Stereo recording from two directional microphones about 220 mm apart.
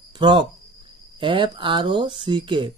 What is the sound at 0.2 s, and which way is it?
Speech, 20° right (ahead or behind).